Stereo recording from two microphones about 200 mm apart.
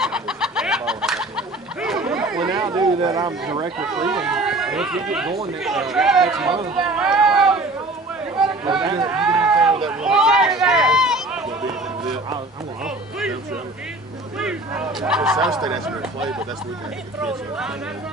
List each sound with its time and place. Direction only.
0.0 s a sound: 5° right (ahead or behind)
2.4 s a sound: 20° right (ahead or behind)
3.7 s speech: 5° right (ahead or behind)
6.7 s run: 5° right (ahead or behind)
8.8 s speech: 25° right (ahead or behind)
9.1 s a sound: 5° right (ahead or behind)
9.8 s speech: 5° right (ahead or behind)
14.4 s speech: 5° right (ahead or behind)
15.5 s speech: 20° right (ahead or behind)
16.0 s speech: 5° right (ahead or behind)